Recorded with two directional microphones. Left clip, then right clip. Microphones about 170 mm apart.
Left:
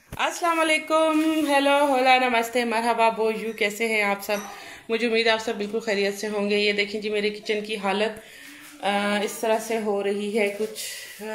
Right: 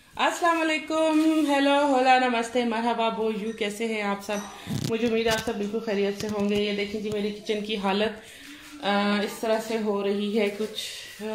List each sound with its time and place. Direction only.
0.4 s speech: centre (ahead or behind)
4.9 s a woman's voice: 15° left (ahead or behind)
7.4 s a woman's voice: 5° right (ahead or behind)